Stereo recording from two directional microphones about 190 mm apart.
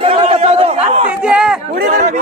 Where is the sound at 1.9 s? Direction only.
35° right (ahead or behind).